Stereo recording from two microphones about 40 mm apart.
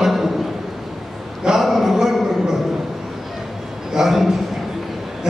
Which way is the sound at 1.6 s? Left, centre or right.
Centre.